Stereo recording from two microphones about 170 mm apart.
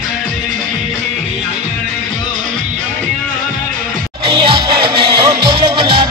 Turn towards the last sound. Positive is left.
turn(degrees=-30)  # may be behind; listen again after turning